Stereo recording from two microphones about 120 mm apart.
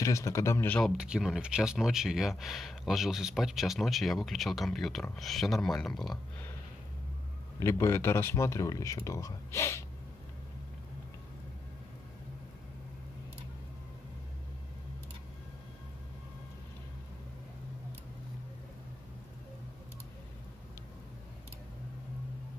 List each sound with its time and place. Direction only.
0.0 s speech: 25° left (ahead or behind)
0.7 s speech: 5° left (ahead or behind)
0.9 s speech: 5° right (ahead or behind)
7.5 s speech: 25° left (ahead or behind)